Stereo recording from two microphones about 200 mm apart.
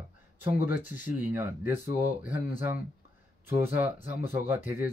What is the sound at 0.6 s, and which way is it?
Speech, 10° right (ahead or behind).